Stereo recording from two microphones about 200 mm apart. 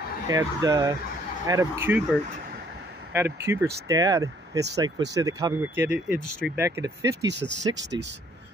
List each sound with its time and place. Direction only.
0.3 s speech: 15° right (ahead or behind)
3.1 s speech: 10° right (ahead or behind)
7.7 s speech: 65° right (ahead or behind)